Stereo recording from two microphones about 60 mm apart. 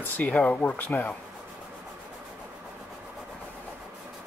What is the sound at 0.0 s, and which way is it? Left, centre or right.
Speech, left.